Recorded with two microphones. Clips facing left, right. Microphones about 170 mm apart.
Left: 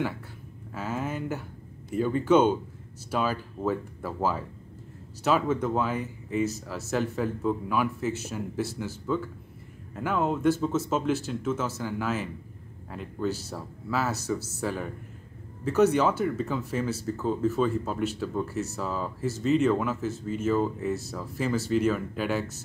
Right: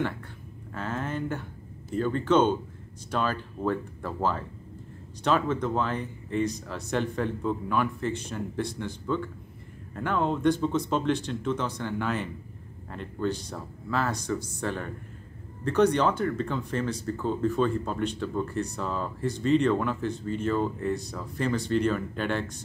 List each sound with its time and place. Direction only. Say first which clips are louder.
0.7 s speech: even; 5° left (ahead or behind)